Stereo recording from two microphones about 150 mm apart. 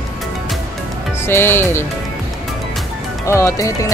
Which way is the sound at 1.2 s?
15° left (ahead or behind).